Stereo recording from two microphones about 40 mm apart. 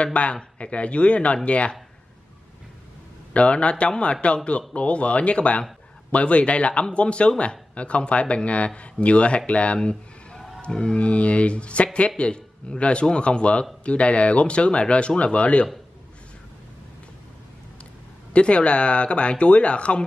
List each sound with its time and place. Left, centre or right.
0.0 s speech: left
3.3 s speech: left
9.8 s a sound: left
11.0 s speech: left
18.3 s speech: left